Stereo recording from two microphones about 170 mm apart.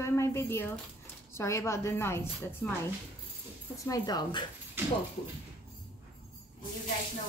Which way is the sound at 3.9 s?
25° left (ahead or behind).